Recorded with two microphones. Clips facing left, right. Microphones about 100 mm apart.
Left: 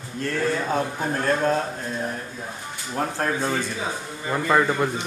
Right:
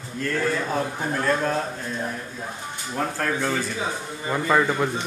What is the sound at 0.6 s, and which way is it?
Speech, 15° left (ahead or behind).